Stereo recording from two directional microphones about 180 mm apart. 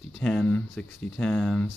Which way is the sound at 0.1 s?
5° left (ahead or behind).